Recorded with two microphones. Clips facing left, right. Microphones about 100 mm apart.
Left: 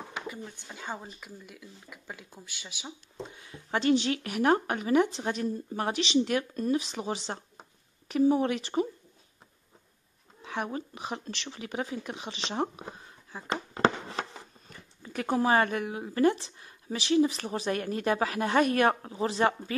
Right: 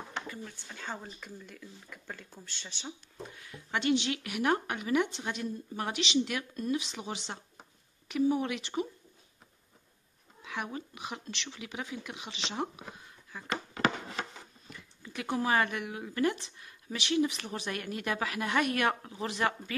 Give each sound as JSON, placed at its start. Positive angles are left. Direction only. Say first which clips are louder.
{"t": 0.1, "sound": "speech", "louder": "left 2 dB", "side_deg": 15}
{"t": 3.3, "sound": "a sound", "louder": "left 1 dB", "side_deg": 25}
{"t": 3.7, "sound": "speech", "louder": "left 4 dB", "side_deg": 35}
{"t": 10.4, "sound": "speech", "louder": "left 4 dB", "side_deg": 35}